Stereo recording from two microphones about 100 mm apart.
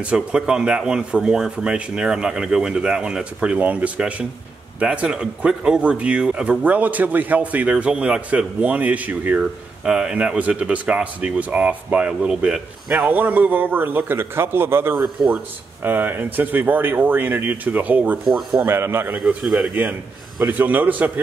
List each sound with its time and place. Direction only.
0.0 s speech: 10° right (ahead or behind)
15.0 s speech: 5° right (ahead or behind)
15.8 s speech: 20° right (ahead or behind)
18.2 s a man's voice: 5° right (ahead or behind)
18.7 s speech: 25° right (ahead or behind)
19.1 s a man's voice: 5° right (ahead or behind)
19.7 s speech: 15° right (ahead or behind)